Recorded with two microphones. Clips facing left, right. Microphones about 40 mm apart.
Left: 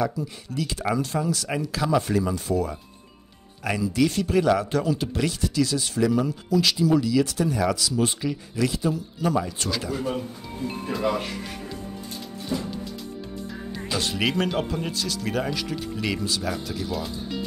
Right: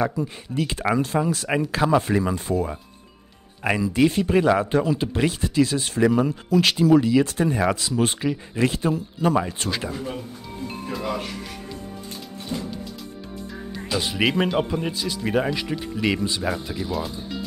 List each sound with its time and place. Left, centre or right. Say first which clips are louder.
0.0 s speech: right 2 dB; right
3.9 s speech: right 2 dB; right
8.2 s speech: right 3 dB; right
8.6 s speech: right 3 dB; right
10.9 s speech: left 3 dB; centre
13.9 s speech: right 3 dB; centre
16.6 s speech: right 2 dB; centre